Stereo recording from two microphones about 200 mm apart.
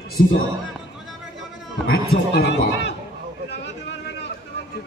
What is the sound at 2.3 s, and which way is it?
Speech, 55° left (ahead or behind).